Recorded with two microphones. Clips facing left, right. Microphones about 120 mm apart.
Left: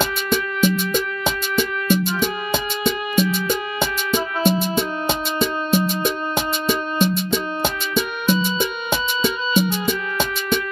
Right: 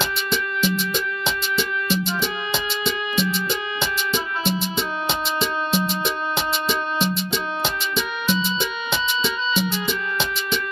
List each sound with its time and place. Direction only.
0.0 s music: 50° left (ahead or behind)